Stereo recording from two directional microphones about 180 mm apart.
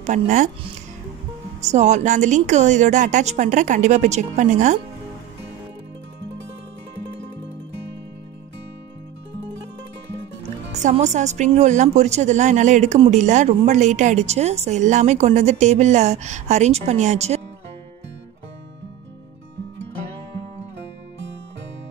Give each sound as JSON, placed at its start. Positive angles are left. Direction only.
{"t": 0.0, "sound": "speech", "side_deg": -45}
{"t": 1.6, "sound": "a woman's voice", "side_deg": -40}
{"t": 10.7, "sound": "a woman's voice", "side_deg": -40}